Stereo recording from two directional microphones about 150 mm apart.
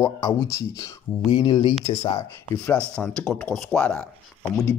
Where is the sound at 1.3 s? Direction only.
35° left (ahead or behind).